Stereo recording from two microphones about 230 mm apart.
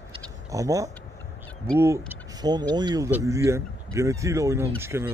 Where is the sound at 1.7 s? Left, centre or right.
Centre.